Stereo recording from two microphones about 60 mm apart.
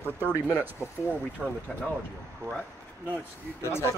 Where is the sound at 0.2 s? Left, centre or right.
Right.